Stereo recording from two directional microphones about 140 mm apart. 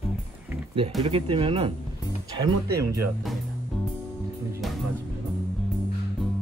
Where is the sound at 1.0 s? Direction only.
40° right (ahead or behind).